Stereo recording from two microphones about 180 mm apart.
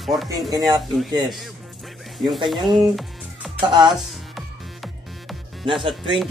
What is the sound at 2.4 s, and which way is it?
Speech, 25° right (ahead or behind).